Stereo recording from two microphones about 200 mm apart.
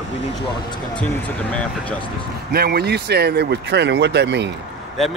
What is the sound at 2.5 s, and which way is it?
Speech, 50° right (ahead or behind).